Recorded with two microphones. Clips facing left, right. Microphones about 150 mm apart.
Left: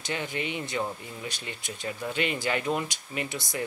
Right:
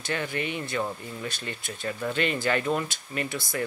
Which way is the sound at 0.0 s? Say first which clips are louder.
Right 2 dB; 15° left (ahead or behind).